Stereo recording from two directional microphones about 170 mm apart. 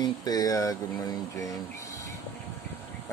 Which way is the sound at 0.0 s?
25° left (ahead or behind).